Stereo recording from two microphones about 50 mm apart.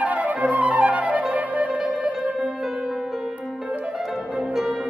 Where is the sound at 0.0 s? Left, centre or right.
Right.